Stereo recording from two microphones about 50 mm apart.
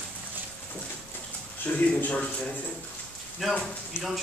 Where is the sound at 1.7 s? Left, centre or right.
Left.